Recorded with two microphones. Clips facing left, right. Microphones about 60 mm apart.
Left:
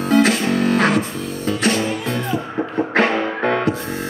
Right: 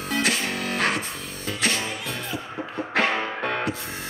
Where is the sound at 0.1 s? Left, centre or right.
Left.